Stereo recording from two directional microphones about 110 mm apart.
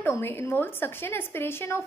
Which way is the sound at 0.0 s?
20° left (ahead or behind).